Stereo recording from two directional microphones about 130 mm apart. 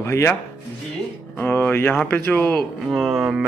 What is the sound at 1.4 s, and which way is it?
Speech, 15° left (ahead or behind).